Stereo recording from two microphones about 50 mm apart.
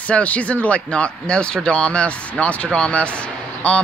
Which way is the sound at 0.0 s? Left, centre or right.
Left.